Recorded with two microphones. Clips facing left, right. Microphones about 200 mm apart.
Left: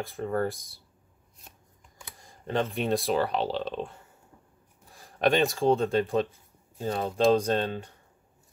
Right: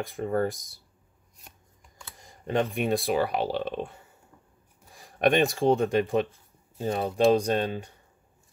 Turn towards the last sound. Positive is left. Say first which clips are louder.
# right 1 dB
turn(degrees=-10)  # may be behind; listen again after turning